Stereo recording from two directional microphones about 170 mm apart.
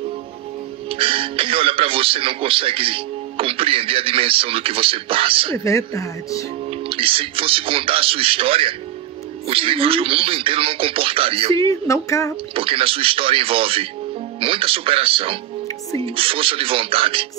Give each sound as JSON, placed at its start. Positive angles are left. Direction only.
{"t": 0.8, "sound": "speech", "side_deg": -30}
{"t": 5.6, "sound": "speech", "side_deg": 15}
{"t": 6.9, "sound": "speech", "side_deg": -30}
{"t": 11.5, "sound": "speech", "side_deg": 20}
{"t": 12.5, "sound": "speech", "side_deg": -30}